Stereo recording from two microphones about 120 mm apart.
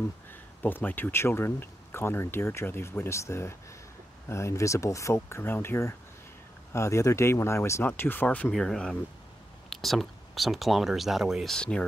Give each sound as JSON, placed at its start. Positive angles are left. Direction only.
{"t": 0.6, "sound": "speech", "side_deg": 15}
{"t": 8.5, "sound": "speech", "side_deg": 5}